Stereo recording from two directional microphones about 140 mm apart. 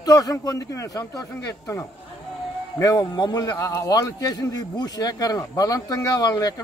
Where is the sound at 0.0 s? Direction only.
25° left (ahead or behind).